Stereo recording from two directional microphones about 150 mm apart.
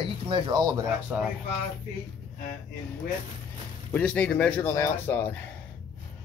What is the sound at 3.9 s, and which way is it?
Speech, 10° left (ahead or behind).